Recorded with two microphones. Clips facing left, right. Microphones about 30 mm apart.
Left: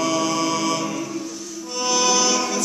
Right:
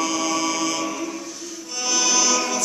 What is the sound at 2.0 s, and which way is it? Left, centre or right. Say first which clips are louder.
Music: left 1 dB; centre.